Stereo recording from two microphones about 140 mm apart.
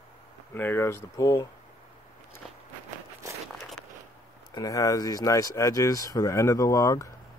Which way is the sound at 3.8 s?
5° left (ahead or behind).